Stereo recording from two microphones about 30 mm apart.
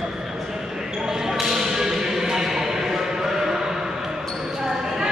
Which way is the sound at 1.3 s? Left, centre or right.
Centre.